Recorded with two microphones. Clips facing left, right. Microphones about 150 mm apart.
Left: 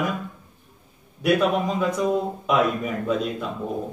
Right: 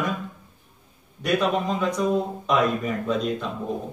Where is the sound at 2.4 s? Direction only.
5° left (ahead or behind).